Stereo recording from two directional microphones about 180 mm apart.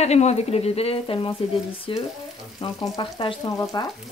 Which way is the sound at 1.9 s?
30° left (ahead or behind).